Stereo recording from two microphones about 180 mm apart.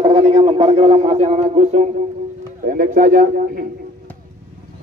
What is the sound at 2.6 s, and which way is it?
A man's voice, 50° right (ahead or behind).